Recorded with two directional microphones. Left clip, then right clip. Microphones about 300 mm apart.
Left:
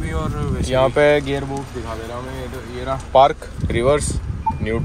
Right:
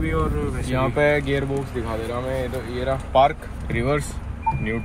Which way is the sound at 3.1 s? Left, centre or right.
Left.